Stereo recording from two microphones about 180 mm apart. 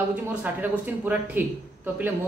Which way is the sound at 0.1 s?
10° right (ahead or behind).